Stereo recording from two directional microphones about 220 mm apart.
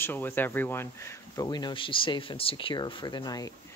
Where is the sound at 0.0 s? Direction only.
10° left (ahead or behind).